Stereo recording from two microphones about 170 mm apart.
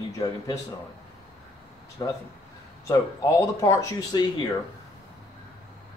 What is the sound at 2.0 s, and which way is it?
A man's voice, 25° left (ahead or behind).